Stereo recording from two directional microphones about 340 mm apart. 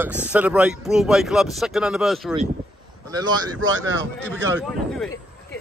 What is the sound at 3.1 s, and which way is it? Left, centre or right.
Speech, centre.